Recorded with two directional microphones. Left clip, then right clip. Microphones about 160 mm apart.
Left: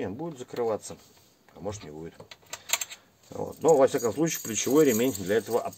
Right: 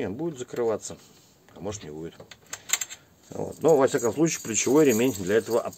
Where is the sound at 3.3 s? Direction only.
45° right (ahead or behind).